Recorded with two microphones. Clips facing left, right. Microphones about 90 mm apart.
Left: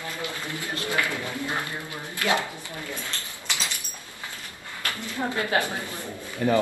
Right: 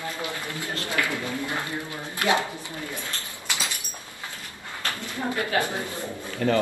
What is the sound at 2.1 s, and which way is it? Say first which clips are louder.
Speech: right 2 dB; 20° right (ahead or behind).